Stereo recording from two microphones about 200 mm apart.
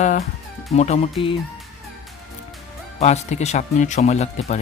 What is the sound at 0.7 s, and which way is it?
Speech, 35° left (ahead or behind).